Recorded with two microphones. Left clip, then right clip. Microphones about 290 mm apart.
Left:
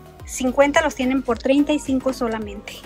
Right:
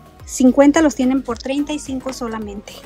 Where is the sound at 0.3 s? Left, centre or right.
Right.